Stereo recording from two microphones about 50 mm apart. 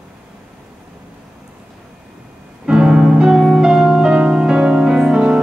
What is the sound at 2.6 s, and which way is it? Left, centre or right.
Music, centre.